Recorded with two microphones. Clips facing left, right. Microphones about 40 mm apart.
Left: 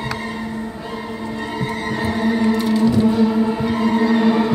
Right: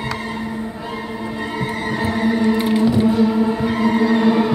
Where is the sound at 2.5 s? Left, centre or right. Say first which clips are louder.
Even; right; by 4.5 s centre.